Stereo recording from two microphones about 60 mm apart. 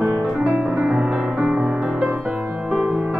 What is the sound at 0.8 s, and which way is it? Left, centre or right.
Music, centre.